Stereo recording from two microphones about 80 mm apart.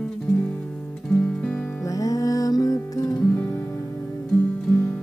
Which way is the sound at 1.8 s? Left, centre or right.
Left.